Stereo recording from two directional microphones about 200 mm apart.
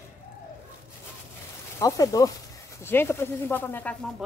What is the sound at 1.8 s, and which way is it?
Speech, 15° left (ahead or behind).